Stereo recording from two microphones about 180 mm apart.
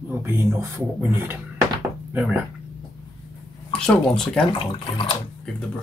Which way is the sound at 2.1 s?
10° right (ahead or behind).